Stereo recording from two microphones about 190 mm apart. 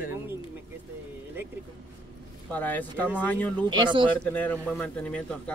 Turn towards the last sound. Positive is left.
turn(degrees=5)  # may be behind; listen again after turning